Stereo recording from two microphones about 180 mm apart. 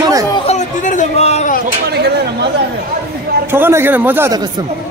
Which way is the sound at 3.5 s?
10° right (ahead or behind).